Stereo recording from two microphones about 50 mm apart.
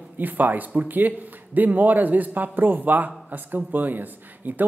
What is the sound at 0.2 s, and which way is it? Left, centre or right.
A man's voice, right.